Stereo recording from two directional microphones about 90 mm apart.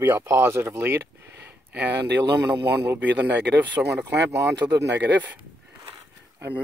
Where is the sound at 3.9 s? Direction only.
35° right (ahead or behind).